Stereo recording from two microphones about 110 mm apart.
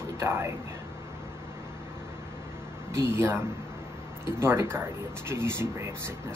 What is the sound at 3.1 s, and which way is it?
Speech, 25° right (ahead or behind).